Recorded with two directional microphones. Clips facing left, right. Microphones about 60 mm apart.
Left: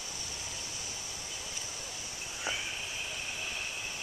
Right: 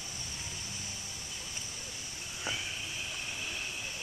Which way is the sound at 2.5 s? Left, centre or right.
Centre.